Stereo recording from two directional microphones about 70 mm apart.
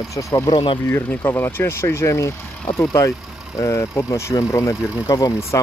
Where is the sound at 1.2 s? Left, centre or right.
Left.